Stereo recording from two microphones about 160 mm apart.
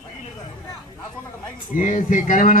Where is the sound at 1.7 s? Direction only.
50° left (ahead or behind).